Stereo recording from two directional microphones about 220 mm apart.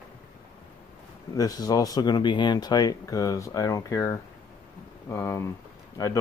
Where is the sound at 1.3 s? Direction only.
15° left (ahead or behind).